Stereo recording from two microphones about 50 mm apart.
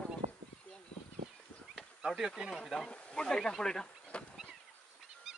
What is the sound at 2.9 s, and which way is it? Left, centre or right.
Speech, centre.